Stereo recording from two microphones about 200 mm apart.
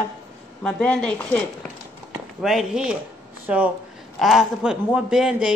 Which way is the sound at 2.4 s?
5° right (ahead or behind).